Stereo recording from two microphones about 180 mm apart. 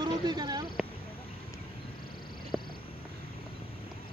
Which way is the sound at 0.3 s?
25° right (ahead or behind).